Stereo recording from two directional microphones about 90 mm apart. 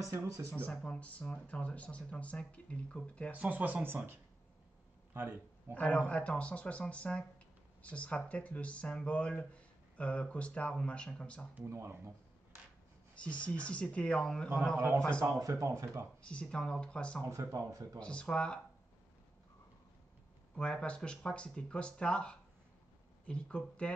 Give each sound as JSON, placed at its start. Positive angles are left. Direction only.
{"t": 0.0, "sound": "speech", "side_deg": -35}
{"t": 0.5, "sound": "speech", "side_deg": 15}
{"t": 3.3, "sound": "speech", "side_deg": -20}
{"t": 5.8, "sound": "speech", "side_deg": 15}
{"t": 11.5, "sound": "speech", "side_deg": -30}
{"t": 13.1, "sound": "speech", "side_deg": 15}
{"t": 15.2, "sound": "speech", "side_deg": -35}
{"t": 16.2, "sound": "speech", "side_deg": 10}
{"t": 17.2, "sound": "speech", "side_deg": -35}
{"t": 18.0, "sound": "speech", "side_deg": 10}
{"t": 20.5, "sound": "speech", "side_deg": 10}